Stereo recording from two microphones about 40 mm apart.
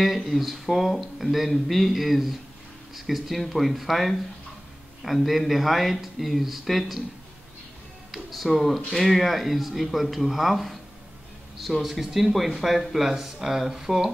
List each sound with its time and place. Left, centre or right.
0.0 s speech: centre
8.1 s speech: centre